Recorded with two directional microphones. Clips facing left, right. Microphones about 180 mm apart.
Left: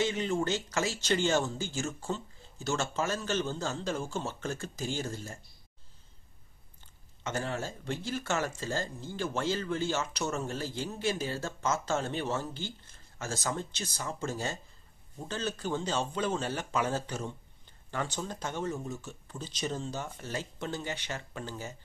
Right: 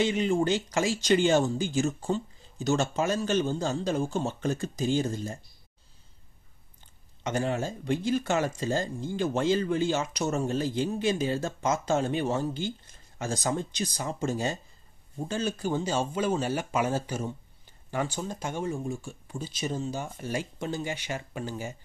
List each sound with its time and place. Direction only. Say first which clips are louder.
0.0 s speech: right 5 dB; 15° right (ahead or behind)
7.2 s speech: right 6 dB; 15° right (ahead or behind)